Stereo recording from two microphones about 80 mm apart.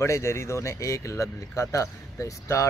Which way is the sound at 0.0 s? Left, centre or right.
Left.